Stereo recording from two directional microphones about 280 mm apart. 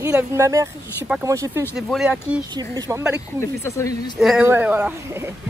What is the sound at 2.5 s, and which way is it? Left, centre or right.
Speech, centre.